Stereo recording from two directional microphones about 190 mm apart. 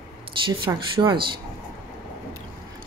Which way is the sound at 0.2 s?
25° right (ahead or behind).